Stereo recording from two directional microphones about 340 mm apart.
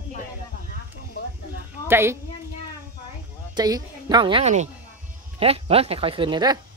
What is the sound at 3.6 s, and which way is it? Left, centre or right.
Speech, centre.